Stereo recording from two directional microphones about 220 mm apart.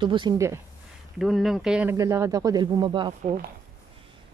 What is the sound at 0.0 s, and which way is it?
Speech, 20° right (ahead or behind).